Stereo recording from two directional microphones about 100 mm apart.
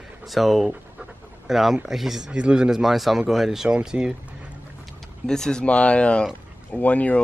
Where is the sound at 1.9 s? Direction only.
5° right (ahead or behind).